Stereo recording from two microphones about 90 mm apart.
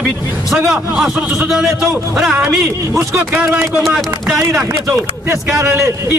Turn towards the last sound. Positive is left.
turn(degrees=-35)  # may be behind; listen again after turning